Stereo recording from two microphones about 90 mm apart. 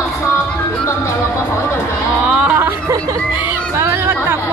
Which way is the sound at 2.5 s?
25° right (ahead or behind).